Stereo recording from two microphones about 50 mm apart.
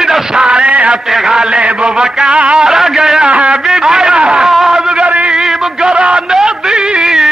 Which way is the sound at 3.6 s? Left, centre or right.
Centre.